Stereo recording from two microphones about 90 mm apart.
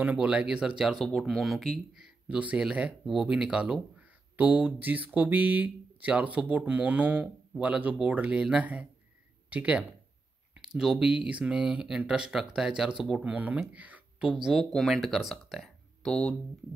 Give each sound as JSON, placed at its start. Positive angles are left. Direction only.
{"t": 0.0, "sound": "speech", "side_deg": -15}
{"t": 2.2, "sound": "speech", "side_deg": -15}
{"t": 10.5, "sound": "a sound", "side_deg": -10}
{"t": 11.1, "sound": "speech", "side_deg": -15}
{"t": 13.2, "sound": "speech", "side_deg": -15}
{"t": 13.7, "sound": "a sound", "side_deg": -15}
{"t": 14.3, "sound": "speech", "side_deg": 0}
{"t": 16.1, "sound": "speech", "side_deg": 10}